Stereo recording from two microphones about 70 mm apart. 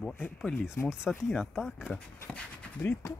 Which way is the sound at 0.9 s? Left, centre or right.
Centre.